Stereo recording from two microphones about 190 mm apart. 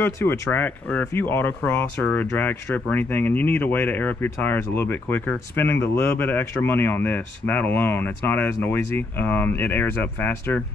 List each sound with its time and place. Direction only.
0.0 s speech: 10° left (ahead or behind)